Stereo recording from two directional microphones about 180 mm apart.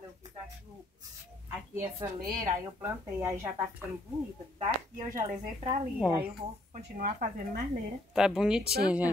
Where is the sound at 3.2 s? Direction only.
15° right (ahead or behind).